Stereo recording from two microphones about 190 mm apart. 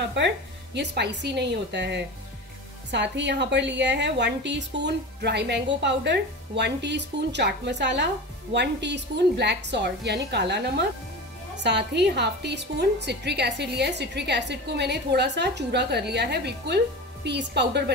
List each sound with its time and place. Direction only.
0.0 s a woman's voice: 65° right (ahead or behind)